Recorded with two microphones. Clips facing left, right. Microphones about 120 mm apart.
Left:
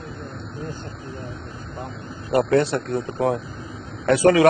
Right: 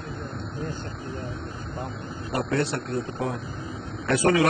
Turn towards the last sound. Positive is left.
turn(degrees=90)